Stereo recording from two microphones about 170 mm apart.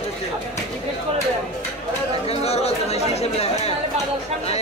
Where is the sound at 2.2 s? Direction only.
35° left (ahead or behind).